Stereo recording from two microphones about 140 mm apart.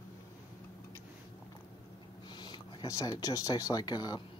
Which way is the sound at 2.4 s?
30° left (ahead or behind).